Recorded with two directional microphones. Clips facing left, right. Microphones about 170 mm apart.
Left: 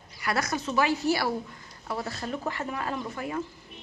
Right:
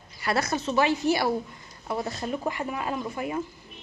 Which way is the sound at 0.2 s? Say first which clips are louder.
Right 2 dB; 30° right (ahead or behind).